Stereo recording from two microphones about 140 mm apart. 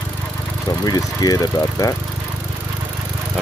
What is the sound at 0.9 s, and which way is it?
Speech, 25° left (ahead or behind).